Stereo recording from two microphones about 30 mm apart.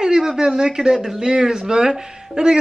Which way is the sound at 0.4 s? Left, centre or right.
Right.